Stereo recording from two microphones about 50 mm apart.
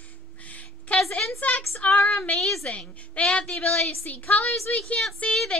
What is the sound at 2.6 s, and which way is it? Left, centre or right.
Speech, left.